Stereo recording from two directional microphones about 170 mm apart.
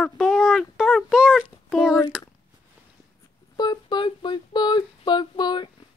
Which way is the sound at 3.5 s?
25° left (ahead or behind).